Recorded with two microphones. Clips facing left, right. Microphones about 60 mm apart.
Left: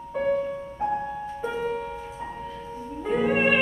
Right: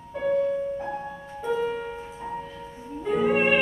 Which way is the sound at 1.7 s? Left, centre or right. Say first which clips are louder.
Left 1 dB; centre.